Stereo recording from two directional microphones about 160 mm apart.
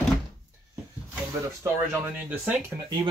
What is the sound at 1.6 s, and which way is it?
Speech, 10° right (ahead or behind).